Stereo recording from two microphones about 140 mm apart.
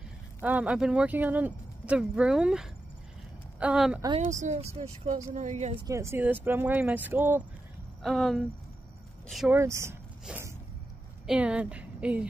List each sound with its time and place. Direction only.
0.4 s a woman's voice: 10° right (ahead or behind)
4.3 s speech: 60° right (ahead or behind)
5.3 s a woman's voice: 60° right (ahead or behind)
5.9 s speech: 20° right (ahead or behind)
8.0 s speech: centre (ahead or behind)
9.5 s speech: 20° right (ahead or behind)
10.3 s a sound: 5° right (ahead or behind)
11.2 s a woman's voice: 10° right (ahead or behind)